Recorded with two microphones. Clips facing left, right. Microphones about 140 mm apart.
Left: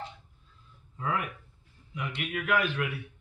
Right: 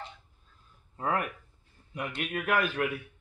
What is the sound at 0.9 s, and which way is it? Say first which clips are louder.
A man's voice: right 2 dB; 50° right (ahead or behind).